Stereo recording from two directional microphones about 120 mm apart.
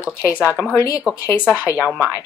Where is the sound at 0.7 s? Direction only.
30° left (ahead or behind).